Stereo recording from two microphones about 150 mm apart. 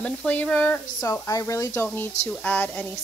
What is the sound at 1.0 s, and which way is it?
Speech, 20° left (ahead or behind).